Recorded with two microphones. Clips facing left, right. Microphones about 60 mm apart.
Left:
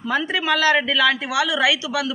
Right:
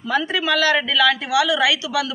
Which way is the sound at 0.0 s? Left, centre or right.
Left.